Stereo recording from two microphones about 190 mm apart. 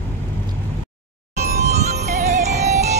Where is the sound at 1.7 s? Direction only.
35° right (ahead or behind).